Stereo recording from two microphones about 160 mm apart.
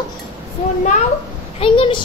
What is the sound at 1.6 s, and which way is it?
Speech, 35° left (ahead or behind).